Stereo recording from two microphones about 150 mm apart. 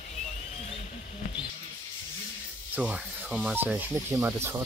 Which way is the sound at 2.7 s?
10° right (ahead or behind).